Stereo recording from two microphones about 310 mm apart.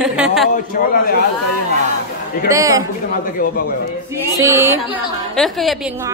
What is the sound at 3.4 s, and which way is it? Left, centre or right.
Speech, left.